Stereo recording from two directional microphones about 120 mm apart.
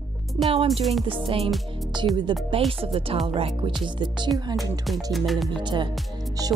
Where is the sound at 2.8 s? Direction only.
50° right (ahead or behind).